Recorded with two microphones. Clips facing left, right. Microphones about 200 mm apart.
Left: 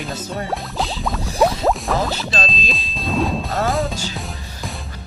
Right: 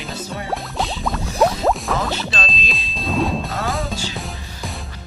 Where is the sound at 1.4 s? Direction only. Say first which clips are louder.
Even; centre (ahead or behind).